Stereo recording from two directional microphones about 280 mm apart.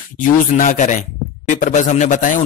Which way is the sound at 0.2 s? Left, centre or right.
Left.